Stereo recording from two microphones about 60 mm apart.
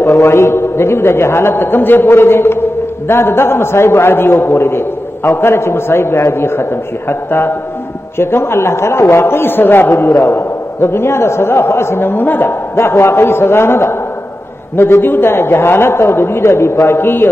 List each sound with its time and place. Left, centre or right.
0.2 s a man's voice: left
12.7 s a man's voice: left